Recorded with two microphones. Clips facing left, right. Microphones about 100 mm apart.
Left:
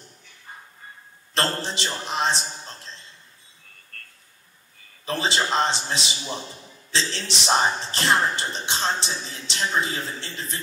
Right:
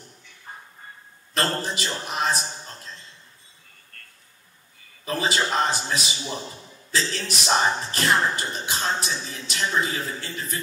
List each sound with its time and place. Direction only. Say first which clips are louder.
1.3 s speech: even; 30° left (ahead or behind)
5.0 s speech: even; 30° left (ahead or behind)